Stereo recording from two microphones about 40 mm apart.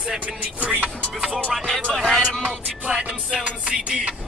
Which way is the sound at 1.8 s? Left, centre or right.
Centre.